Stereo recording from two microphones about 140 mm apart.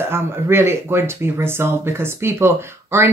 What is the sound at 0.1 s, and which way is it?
Speech, 15° right (ahead or behind).